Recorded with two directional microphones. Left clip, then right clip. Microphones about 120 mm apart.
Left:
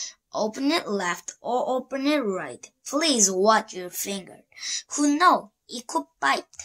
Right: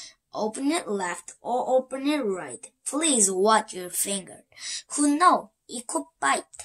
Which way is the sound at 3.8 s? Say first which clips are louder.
Right 1 dB; 20° right (ahead or behind).